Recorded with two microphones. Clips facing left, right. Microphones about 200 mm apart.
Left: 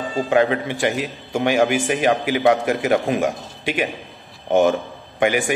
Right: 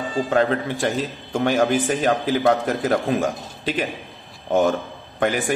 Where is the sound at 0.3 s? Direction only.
15° left (ahead or behind).